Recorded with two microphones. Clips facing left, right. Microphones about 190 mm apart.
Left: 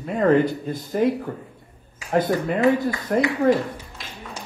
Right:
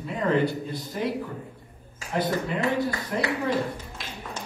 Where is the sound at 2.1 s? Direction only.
50° left (ahead or behind).